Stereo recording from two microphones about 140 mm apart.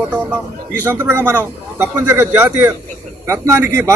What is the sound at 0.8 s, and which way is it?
A man's voice, 15° right (ahead or behind).